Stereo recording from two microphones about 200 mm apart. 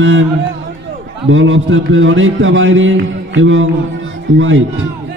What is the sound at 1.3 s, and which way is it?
A man's voice, 75° right (ahead or behind).